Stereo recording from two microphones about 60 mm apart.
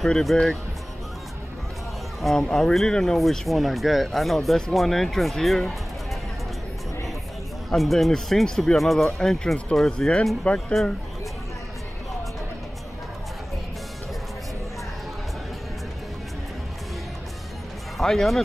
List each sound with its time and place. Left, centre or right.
0.0 s speech: centre
2.2 s speech: centre
7.7 s speech: centre
10.4 s speech: left
17.9 s speech: centre